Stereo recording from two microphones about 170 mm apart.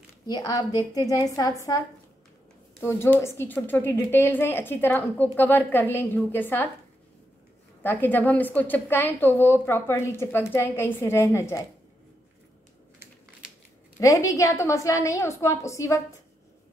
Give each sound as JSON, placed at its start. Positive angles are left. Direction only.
{"t": 0.3, "sound": "a woman's voice", "side_deg": 25}
{"t": 2.8, "sound": "a woman's voice", "side_deg": 15}
{"t": 7.8, "sound": "a woman's voice", "side_deg": 10}
{"t": 13.9, "sound": "a woman's voice", "side_deg": 20}